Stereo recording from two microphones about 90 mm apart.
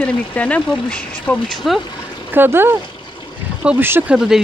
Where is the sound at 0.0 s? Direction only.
15° left (ahead or behind).